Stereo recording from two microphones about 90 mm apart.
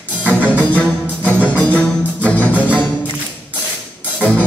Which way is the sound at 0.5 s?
15° left (ahead or behind).